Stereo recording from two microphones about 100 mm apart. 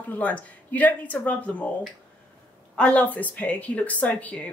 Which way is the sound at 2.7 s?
15° left (ahead or behind).